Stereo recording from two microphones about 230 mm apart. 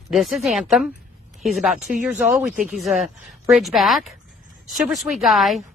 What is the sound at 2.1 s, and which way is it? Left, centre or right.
Speech, centre.